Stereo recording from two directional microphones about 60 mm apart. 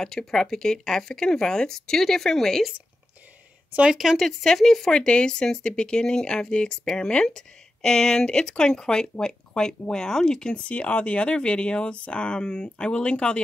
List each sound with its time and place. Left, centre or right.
0.0 s speech: centre
3.9 s speech: centre